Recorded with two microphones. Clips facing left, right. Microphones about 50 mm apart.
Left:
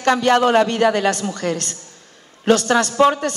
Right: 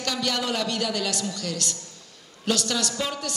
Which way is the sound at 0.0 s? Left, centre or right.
Left.